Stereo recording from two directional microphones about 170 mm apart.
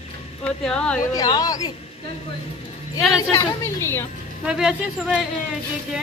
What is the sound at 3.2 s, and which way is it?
Speech, 15° left (ahead or behind).